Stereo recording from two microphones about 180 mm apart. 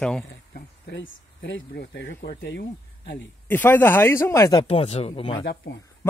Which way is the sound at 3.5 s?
10° left (ahead or behind).